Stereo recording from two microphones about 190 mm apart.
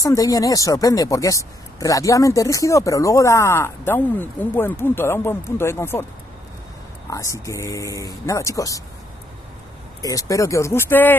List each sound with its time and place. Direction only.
0.0 s speech: 20° left (ahead or behind)
7.1 s speech: 15° left (ahead or behind)
10.0 s speech: 20° left (ahead or behind)